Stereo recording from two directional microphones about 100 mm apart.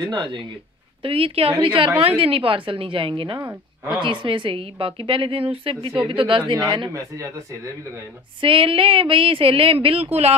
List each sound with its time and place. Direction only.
0.0 s speech: 50° right (ahead or behind)
1.0 s a woman's voice: 70° right (ahead or behind); by 6.9 s 50° right (ahead or behind)
6.9 s speech: 30° right (ahead or behind)
8.4 s speech: 60° right (ahead or behind); by 10.3 s 90° right